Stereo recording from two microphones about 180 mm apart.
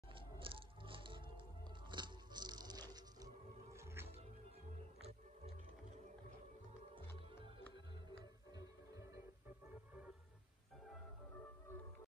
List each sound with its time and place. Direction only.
0.1 s music: 30° right (ahead or behind)